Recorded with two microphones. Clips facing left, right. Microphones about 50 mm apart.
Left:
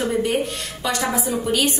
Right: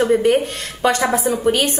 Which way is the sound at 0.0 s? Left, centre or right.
Right.